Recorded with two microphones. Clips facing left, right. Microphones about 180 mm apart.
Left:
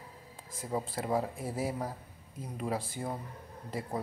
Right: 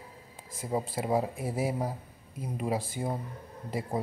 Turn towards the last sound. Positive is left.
turn(degrees=-15)  # may be behind; listen again after turning